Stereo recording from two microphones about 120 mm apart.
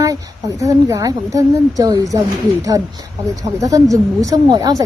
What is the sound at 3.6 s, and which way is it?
Speech, 30° right (ahead or behind).